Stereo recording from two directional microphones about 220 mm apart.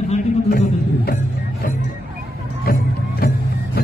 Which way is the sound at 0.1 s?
40° left (ahead or behind).